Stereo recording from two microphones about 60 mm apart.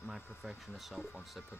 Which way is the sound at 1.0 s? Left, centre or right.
Left.